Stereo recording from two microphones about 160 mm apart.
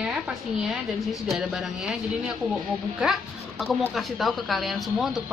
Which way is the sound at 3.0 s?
Centre (ahead or behind).